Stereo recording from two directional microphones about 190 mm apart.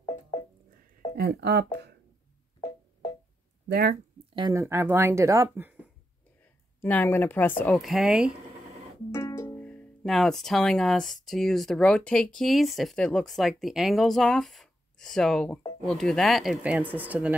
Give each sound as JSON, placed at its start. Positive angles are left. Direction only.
{"t": 0.0, "sound": "music", "side_deg": 15}
{"t": 1.1, "sound": "speech", "side_deg": -60}
{"t": 3.6, "sound": "speech", "side_deg": -50}
{"t": 4.4, "sound": "speech", "side_deg": -15}
{"t": 6.8, "sound": "a woman's voice", "side_deg": 10}
{"t": 9.1, "sound": "speech", "side_deg": 15}